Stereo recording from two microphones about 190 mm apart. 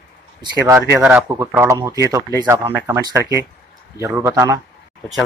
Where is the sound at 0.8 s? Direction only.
10° right (ahead or behind).